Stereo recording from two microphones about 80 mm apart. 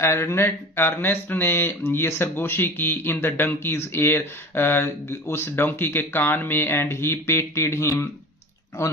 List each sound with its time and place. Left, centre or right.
0.0 s speech: left